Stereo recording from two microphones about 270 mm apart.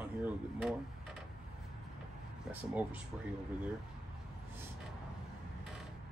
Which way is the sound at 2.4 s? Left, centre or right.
Centre.